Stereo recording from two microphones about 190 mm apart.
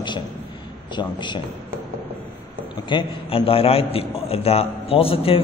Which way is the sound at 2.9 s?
25° left (ahead or behind).